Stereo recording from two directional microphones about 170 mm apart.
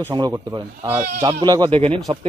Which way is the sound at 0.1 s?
25° right (ahead or behind).